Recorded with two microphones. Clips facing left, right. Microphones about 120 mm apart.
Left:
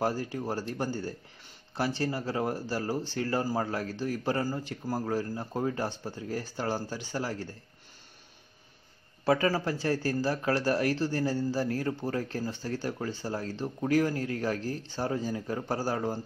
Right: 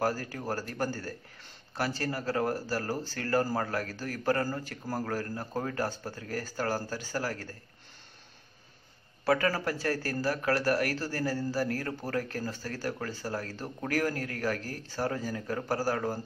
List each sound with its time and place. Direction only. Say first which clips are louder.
0.0 s speech: left 1 dB; 20° left (ahead or behind)
9.2 s speech: left 1 dB; 20° left (ahead or behind)